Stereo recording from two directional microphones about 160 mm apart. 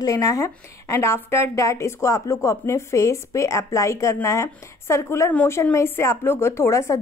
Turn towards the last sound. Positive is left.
turn(degrees=15)  # may be behind; listen again after turning